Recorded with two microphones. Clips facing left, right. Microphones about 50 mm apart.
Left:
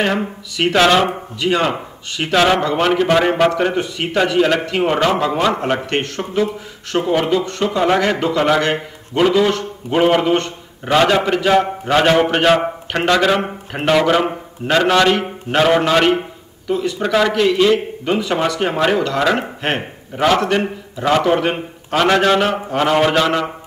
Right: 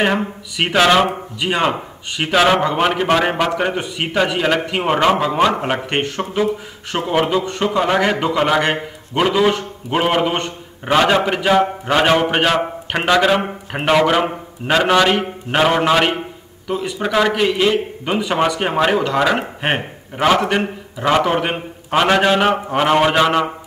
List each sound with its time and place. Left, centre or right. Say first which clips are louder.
0.0 s a man's voice: right 1 dB; centre
2.6 s a man's voice: left 1 dB; centre